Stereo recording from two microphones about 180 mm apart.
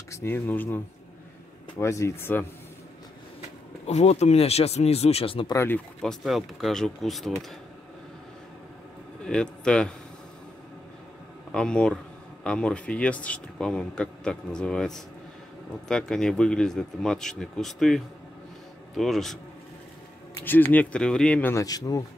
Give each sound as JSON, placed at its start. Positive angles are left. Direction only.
{"t": 0.1, "sound": "speech", "side_deg": 10}
{"t": 3.8, "sound": "speech", "side_deg": 35}
{"t": 5.5, "sound": "speech", "side_deg": 15}
{"t": 6.0, "sound": "speech", "side_deg": 0}
{"t": 9.2, "sound": "a man's voice", "side_deg": 5}
{"t": 11.5, "sound": "speech", "side_deg": 5}
{"t": 20.4, "sound": "speech", "side_deg": 10}